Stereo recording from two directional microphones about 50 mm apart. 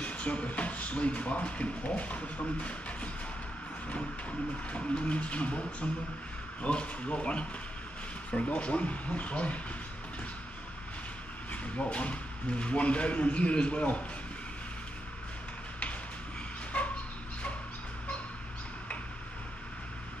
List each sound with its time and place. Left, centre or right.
0.0 s speech: left
8.5 s speech: left
11.5 s speech: left
16.7 s dog: left